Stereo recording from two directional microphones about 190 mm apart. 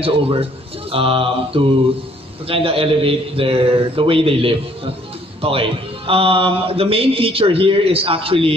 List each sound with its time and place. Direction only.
0.0 s speech: 30° right (ahead or behind)